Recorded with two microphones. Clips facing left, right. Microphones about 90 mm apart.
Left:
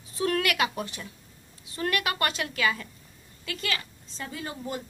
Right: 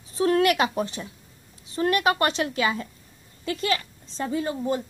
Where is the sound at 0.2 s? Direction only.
30° right (ahead or behind).